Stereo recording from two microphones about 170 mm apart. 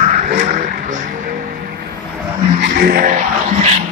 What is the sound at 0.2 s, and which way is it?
Vehicle, 50° right (ahead or behind).